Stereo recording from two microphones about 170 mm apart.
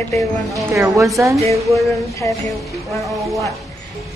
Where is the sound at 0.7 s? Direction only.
20° right (ahead or behind).